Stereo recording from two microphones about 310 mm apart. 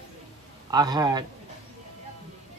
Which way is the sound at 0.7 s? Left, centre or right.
Centre.